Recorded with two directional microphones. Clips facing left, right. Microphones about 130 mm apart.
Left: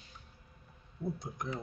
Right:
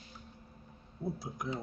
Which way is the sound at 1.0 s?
5° right (ahead or behind).